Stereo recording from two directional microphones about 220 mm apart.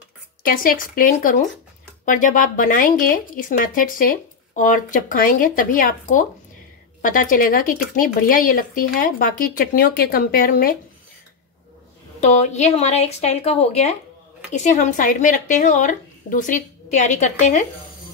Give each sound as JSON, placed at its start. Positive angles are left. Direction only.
{"t": 0.5, "sound": "a woman's voice", "side_deg": 40}
{"t": 12.2, "sound": "a woman's voice", "side_deg": 30}